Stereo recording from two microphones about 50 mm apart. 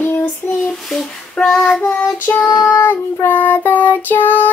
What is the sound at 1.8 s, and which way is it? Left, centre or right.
Child singing, left.